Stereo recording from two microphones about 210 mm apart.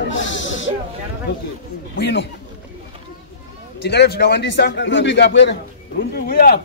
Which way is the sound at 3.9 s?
50° left (ahead or behind).